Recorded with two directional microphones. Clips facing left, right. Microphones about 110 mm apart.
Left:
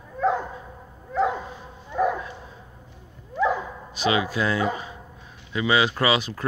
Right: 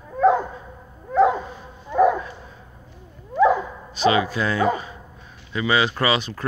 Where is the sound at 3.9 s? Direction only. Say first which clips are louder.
Right 4 dB; 10° left (ahead or behind).